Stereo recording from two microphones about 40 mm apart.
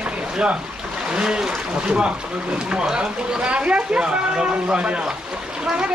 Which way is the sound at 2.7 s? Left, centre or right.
Right.